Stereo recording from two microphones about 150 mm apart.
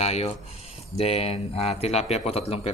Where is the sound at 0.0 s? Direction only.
45° left (ahead or behind).